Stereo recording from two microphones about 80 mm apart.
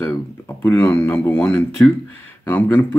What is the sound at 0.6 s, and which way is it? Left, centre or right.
Speech, left.